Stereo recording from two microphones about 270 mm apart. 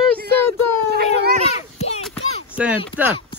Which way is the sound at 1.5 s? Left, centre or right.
Left.